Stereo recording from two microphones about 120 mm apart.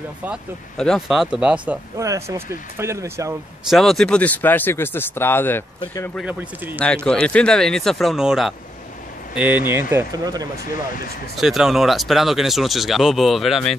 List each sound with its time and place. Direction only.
0.7 s speech: centre (ahead or behind)
2.0 s speech: 25° right (ahead or behind)
3.7 s speech: centre (ahead or behind); by 5.6 s 20° left (ahead or behind)
6.2 s speech: 15° right (ahead or behind)
6.8 s speech: 10° left (ahead or behind); by 10.0 s 20° right (ahead or behind)
10.1 s speech: 30° right (ahead or behind)
11.3 s speech: 5° right (ahead or behind)